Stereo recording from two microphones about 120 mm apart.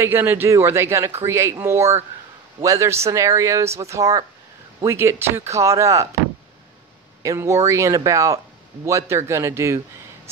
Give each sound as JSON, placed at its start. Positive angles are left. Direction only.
{"t": 0.0, "sound": "speech", "side_deg": -20}
{"t": 7.2, "sound": "speech", "side_deg": -25}